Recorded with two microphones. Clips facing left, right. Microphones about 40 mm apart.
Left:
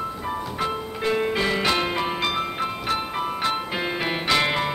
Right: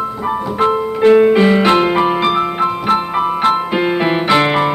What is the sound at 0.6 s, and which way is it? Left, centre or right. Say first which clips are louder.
Music: right 15 dB; right.